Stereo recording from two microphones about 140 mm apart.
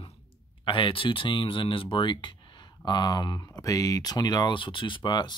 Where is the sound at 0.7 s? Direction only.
40° left (ahead or behind).